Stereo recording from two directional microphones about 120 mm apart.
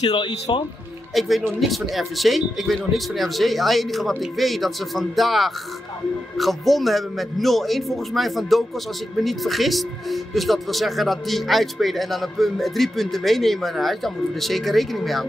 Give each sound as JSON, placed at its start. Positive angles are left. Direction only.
{"t": 0.0, "sound": "speech", "side_deg": 40}
{"t": 1.1, "sound": "speech", "side_deg": 0}